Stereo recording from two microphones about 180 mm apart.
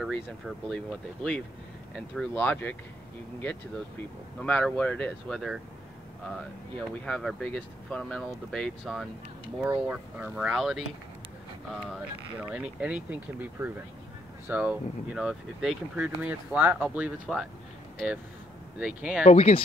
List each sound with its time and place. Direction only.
0.0 s speech: centre (ahead or behind)
4.4 s speech: 5° left (ahead or behind)
7.1 s speech: centre (ahead or behind)
9.7 s speech: 10° right (ahead or behind)
19.2 s speech: 35° left (ahead or behind)